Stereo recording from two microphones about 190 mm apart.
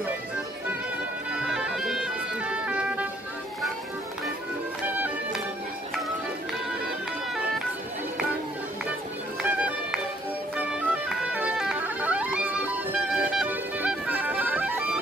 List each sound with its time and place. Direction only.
1.3 s bagpipes: 5° right (ahead or behind)
4.9 s music: 10° right (ahead or behind)
9.4 s music: 5° right (ahead or behind)